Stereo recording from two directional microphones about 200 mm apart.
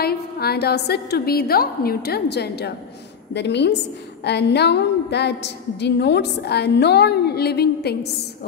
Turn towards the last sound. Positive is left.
turn(degrees=55)  # may be behind; listen again after turning